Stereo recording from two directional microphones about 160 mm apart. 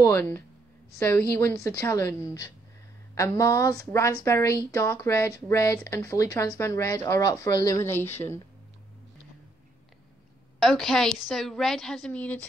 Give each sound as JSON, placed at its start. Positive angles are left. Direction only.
{"t": 0.0, "sound": "speech", "side_deg": 15}
{"t": 10.6, "sound": "a woman's voice", "side_deg": 0}